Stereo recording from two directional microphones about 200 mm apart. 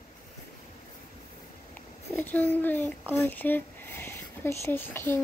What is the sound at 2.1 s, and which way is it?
A child's voice, 10° left (ahead or behind).